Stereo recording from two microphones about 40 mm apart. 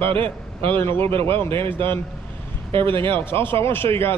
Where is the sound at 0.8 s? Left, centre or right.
Left.